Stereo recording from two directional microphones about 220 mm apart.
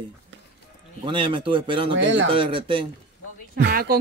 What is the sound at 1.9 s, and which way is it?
Speech, 55° right (ahead or behind).